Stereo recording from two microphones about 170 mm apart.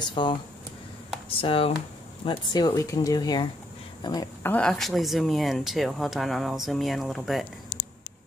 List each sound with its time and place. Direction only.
0.0 s speech: 30° left (ahead or behind)
4.5 s speech: 5° left (ahead or behind)